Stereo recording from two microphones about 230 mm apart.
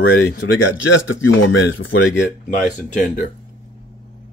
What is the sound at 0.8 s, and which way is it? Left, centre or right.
A man's voice, left.